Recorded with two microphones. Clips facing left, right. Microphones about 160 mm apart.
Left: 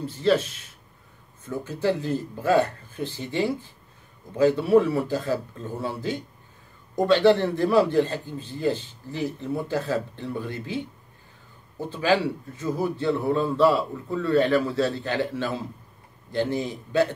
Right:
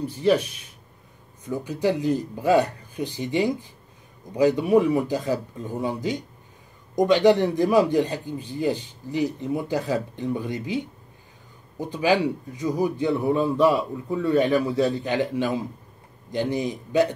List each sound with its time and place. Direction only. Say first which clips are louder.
0.0 s speech: right 1 dB; 15° right (ahead or behind)